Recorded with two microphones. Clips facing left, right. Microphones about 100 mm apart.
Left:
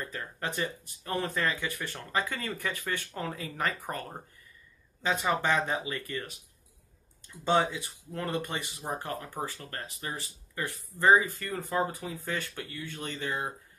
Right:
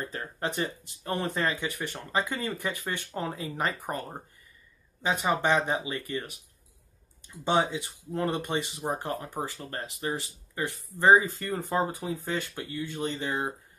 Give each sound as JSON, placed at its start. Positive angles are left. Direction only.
{"t": 0.0, "sound": "speech", "side_deg": -25}
{"t": 7.4, "sound": "speech", "side_deg": -20}